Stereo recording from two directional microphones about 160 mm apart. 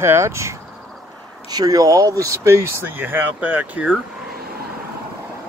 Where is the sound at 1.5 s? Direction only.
25° right (ahead or behind).